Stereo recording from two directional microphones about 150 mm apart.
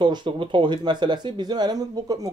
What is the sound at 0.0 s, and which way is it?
Speech, 30° right (ahead or behind).